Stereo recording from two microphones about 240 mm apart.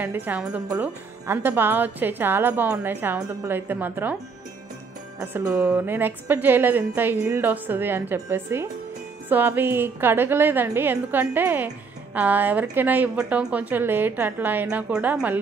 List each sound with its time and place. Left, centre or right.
0.0 s a woman's voice: centre
5.2 s a woman's voice: centre